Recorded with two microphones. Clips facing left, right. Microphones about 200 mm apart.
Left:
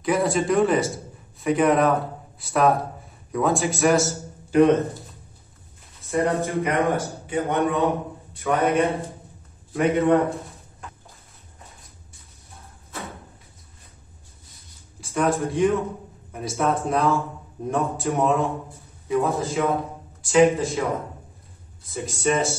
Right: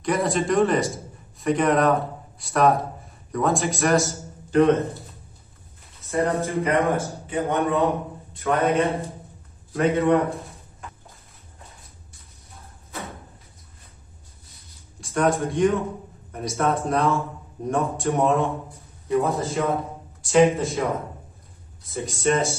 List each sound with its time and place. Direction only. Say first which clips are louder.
0.0 s a man's voice: left 1 dB; centre (ahead or behind)
4.6 s a man's voice: left 1 dB; 15° left (ahead or behind)
6.0 s a man's voice: left 1 dB; 15° left (ahead or behind)
15.0 s a man's voice: right 1 dB; centre (ahead or behind)